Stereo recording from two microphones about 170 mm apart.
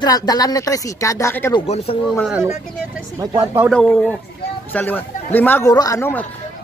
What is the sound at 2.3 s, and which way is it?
Speech, 10° right (ahead or behind).